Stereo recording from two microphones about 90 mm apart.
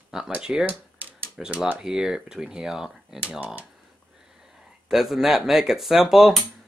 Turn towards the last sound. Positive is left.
turn(degrees=-5)  # may be behind; listen again after turning